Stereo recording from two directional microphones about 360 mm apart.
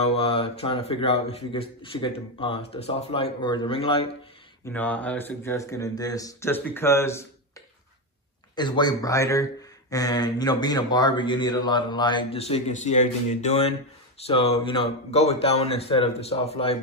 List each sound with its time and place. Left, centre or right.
0.0 s speech: centre
4.6 s speech: centre
8.5 s speech: centre